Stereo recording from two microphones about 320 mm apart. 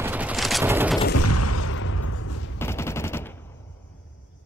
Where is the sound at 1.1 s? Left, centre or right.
Left.